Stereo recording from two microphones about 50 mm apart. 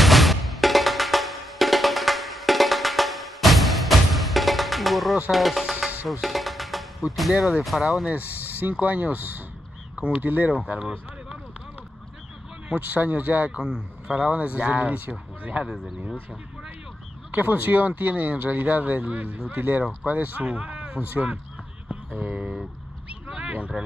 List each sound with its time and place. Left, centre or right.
0.0 s music: centre
5.3 s speech: centre
6.2 s music: centre
7.1 s speech: centre
8.1 s speech: right
9.9 s speech: right
10.2 s speech: right
10.8 s a sound: centre
12.7 s speech: right
13.5 s speech: centre
15.6 s speech: centre
17.3 s a man's voice: right
21.8 s a sound: right